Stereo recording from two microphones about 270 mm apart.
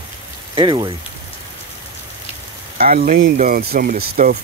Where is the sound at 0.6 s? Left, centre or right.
Centre.